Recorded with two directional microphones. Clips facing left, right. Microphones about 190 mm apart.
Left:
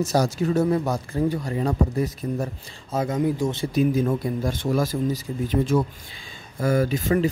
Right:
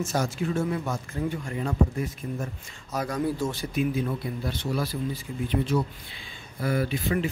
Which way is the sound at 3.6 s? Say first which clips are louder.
Left 7 dB; 40° left (ahead or behind).